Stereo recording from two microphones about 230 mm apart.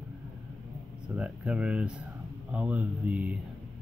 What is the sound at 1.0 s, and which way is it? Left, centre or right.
Speech, centre.